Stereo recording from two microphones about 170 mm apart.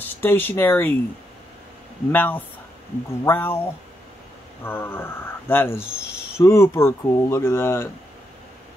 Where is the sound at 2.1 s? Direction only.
10° left (ahead or behind).